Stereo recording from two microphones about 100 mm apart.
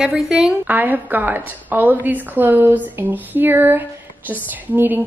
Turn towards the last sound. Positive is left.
turn(degrees=-20)  # may be behind; listen again after turning